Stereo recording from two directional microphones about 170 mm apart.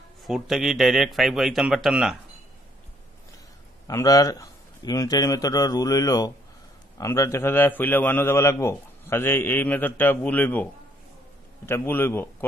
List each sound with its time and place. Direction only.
0.2 s speech: centre (ahead or behind)
3.8 s a man's voice: 20° left (ahead or behind)